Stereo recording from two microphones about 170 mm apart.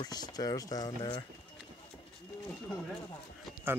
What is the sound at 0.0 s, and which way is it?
Speech, 25° left (ahead or behind).